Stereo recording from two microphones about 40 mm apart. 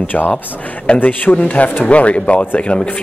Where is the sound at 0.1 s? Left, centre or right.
Left.